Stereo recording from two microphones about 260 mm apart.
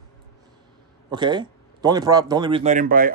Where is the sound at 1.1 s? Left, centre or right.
Centre.